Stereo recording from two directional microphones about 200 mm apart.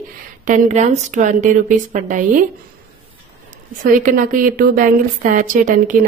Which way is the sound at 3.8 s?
40° right (ahead or behind).